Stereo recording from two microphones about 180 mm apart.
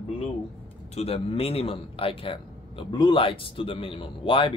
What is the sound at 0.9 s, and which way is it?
Speech, 35° left (ahead or behind).